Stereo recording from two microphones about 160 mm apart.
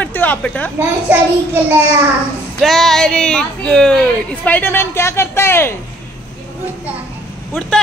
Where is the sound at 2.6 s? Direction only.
Centre (ahead or behind).